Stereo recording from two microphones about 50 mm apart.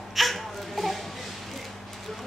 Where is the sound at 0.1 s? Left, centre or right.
Centre.